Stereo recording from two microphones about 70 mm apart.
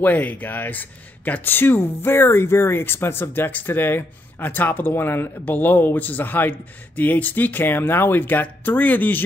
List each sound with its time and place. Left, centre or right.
0.0 s speech: left